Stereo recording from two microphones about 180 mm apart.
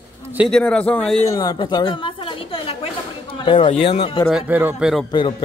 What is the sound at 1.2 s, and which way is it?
A woman's voice, 20° left (ahead or behind).